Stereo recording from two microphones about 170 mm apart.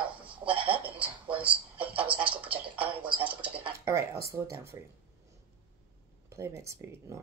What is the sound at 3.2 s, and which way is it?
A woman's voice, 10° right (ahead or behind).